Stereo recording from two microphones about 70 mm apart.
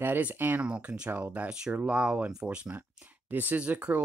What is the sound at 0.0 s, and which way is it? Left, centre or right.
Speech, right.